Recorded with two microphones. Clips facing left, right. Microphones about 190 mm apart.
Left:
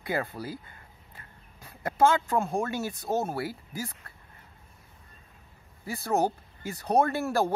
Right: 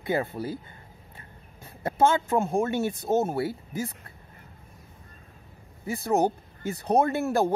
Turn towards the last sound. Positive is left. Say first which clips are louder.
# right 2 dB
turn(degrees=-20)  # may be behind; listen again after turning